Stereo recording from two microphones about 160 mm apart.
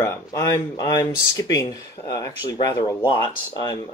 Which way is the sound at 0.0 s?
20° left (ahead or behind).